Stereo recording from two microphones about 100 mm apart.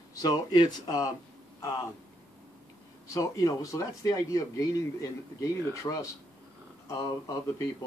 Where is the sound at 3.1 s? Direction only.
35° left (ahead or behind).